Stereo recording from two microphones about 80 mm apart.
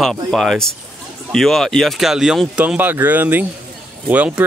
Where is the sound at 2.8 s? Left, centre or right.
Right.